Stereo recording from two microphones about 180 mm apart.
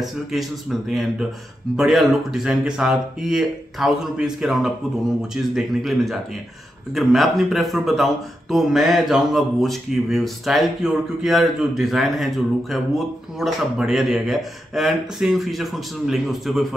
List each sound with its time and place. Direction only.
0.0 s speech: centre (ahead or behind)